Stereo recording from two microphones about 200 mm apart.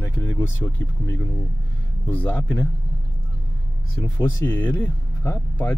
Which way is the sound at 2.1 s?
10° left (ahead or behind).